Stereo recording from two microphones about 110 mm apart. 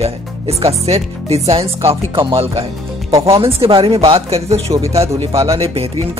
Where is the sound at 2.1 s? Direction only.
50° right (ahead or behind).